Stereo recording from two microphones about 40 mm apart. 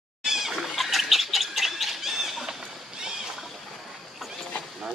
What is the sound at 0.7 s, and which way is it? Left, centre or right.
Bird, centre.